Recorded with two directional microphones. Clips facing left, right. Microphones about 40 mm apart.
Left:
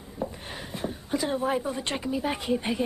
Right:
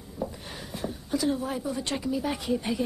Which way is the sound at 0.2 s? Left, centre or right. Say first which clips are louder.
Left 1 dB; left.